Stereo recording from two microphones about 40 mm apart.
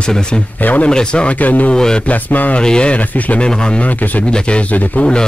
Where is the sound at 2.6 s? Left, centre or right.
Left.